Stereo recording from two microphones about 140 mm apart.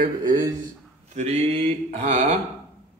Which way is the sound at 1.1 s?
50° right (ahead or behind).